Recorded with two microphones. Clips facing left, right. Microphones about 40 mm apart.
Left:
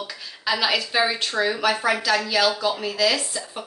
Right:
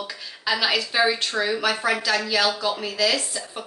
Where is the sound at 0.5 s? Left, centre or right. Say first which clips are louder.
Even; centre.